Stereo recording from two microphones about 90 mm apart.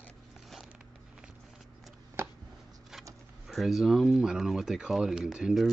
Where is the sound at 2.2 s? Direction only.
30° right (ahead or behind).